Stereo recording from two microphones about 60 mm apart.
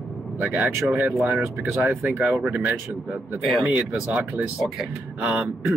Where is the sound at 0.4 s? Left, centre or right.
Right.